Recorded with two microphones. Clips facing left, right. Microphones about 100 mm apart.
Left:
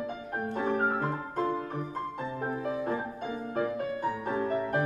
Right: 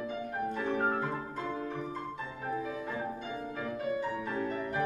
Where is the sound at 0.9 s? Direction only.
35° left (ahead or behind).